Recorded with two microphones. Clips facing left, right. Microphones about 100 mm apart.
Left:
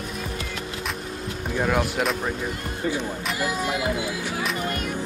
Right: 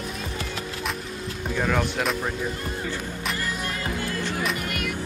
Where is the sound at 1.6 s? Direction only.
5° left (ahead or behind).